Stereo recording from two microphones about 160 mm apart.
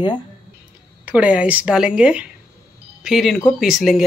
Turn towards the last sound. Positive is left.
turn(degrees=0)  # may be behind; listen again after turning